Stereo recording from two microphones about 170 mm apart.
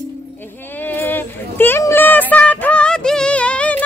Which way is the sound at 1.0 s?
10° left (ahead or behind).